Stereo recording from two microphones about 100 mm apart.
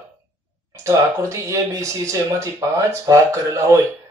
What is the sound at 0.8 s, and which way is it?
Speech, 30° right (ahead or behind).